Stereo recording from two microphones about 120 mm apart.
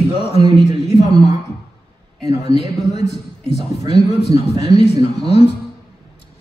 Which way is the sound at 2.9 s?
65° left (ahead or behind).